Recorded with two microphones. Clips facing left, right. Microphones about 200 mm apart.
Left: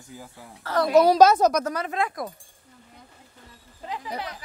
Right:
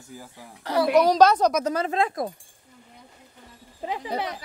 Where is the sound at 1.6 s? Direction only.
25° right (ahead or behind).